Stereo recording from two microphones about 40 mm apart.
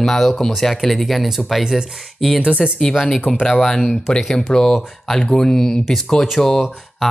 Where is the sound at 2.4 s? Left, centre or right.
Right.